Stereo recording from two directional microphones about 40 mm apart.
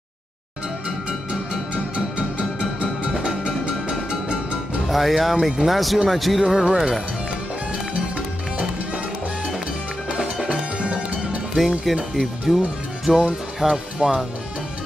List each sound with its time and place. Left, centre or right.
2.0 s music: right
4.8 s speech: centre
6.4 s speech: centre
10.4 s music: right
11.9 s speech: centre
13.9 s speech: centre